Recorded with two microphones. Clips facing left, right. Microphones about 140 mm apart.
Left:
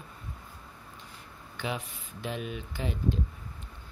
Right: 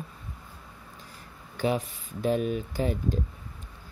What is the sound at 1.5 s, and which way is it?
Speech, 40° right (ahead or behind).